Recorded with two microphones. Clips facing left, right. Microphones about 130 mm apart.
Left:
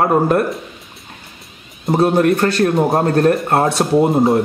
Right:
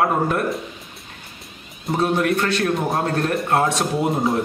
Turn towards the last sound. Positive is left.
turn(degrees=30)  # may be behind; listen again after turning